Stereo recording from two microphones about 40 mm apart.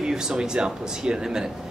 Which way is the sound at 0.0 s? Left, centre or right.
Centre.